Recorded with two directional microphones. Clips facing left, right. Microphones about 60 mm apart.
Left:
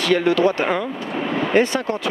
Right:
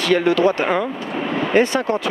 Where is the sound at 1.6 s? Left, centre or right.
Right.